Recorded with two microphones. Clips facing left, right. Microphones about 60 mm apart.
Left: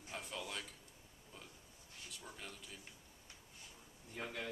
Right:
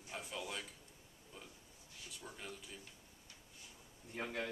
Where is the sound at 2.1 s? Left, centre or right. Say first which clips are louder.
Right 2 dB; centre.